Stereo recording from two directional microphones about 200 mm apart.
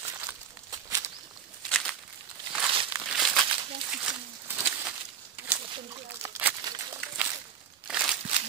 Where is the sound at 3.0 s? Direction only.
Centre (ahead or behind).